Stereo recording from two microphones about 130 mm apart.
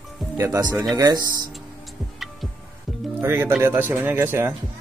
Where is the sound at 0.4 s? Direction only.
25° right (ahead or behind).